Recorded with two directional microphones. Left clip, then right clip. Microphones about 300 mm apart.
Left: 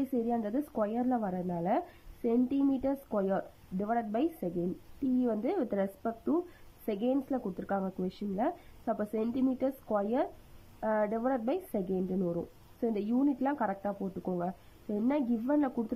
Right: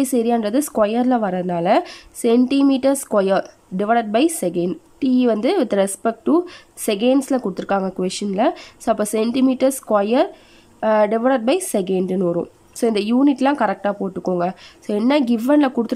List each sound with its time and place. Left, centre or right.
0.1 s a woman's voice: centre
12.2 s a woman's voice: right